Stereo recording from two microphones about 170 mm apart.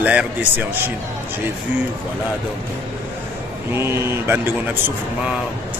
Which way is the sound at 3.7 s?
15° right (ahead or behind).